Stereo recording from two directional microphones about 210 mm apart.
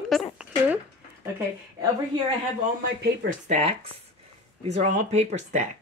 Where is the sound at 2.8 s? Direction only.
45° right (ahead or behind).